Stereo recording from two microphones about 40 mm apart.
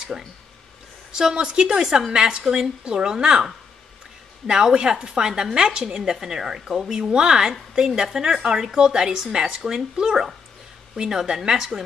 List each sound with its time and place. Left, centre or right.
1.1 s speech: right
4.5 s a woman's voice: centre